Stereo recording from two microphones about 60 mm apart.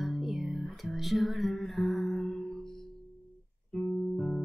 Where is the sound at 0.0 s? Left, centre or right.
Centre.